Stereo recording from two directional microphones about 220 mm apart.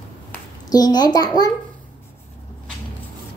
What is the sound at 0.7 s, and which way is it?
Speech, 20° left (ahead or behind).